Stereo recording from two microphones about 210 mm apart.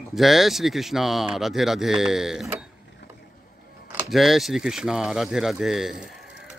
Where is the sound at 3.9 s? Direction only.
5° right (ahead or behind).